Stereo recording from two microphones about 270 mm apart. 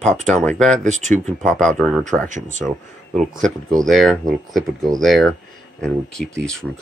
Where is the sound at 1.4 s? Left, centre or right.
Centre.